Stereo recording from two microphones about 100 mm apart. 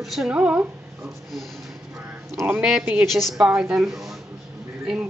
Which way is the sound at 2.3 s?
20° right (ahead or behind).